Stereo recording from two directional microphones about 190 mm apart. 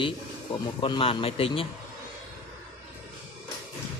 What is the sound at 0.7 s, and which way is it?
Speech, 25° left (ahead or behind).